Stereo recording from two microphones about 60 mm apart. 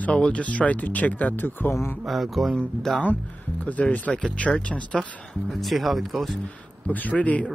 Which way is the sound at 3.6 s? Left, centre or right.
Left.